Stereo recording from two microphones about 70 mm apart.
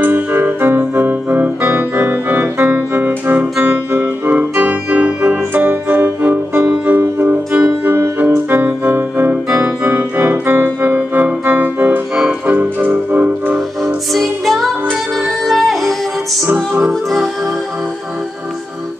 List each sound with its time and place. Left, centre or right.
0.0 s music: right
4.0 s keyboard: right
7.0 s music: right
14.1 s music: centre